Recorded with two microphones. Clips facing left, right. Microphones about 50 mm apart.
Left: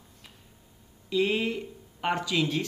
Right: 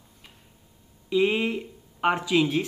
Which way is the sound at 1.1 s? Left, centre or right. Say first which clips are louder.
Right 3 dB; centre.